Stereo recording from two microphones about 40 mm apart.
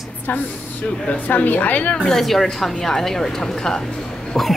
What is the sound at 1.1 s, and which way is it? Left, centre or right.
Speech, left.